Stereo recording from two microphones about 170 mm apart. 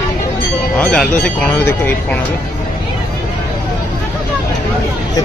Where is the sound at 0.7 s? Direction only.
10° left (ahead or behind).